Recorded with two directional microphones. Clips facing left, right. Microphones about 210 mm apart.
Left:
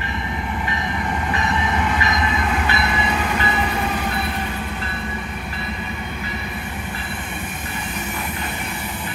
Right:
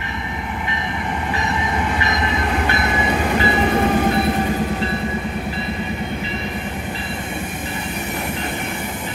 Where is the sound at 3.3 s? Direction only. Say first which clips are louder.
Right 5 dB; 35° right (ahead or behind).